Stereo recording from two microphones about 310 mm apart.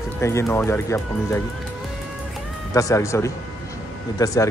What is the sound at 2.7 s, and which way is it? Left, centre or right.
Speech, centre.